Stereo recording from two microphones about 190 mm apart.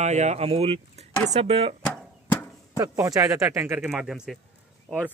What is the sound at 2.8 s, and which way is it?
Speech, 20° right (ahead or behind).